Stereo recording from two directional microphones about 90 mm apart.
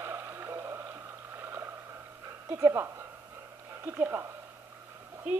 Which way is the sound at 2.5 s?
35° right (ahead or behind).